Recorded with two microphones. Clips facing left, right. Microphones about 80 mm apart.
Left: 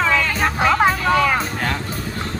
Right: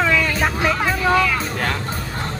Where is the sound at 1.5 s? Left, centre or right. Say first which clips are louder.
Even; centre.